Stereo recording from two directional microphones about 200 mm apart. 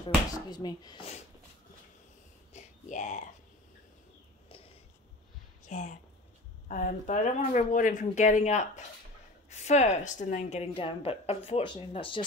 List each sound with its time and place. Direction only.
0.5 s a woman's voice: 20° left (ahead or behind)
2.5 s a sound: 40° left (ahead or behind)
5.7 s a woman's voice: 35° left (ahead or behind)